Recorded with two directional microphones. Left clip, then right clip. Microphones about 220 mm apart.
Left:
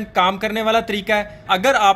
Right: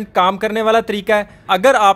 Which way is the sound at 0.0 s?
35° right (ahead or behind).